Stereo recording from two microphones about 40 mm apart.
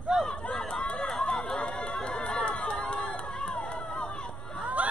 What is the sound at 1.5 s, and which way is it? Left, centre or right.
Chatter, left.